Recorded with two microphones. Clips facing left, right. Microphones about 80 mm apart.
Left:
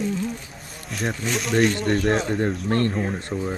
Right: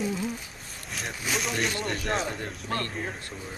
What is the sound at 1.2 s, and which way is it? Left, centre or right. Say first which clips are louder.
Speech: left 8 dB; centre.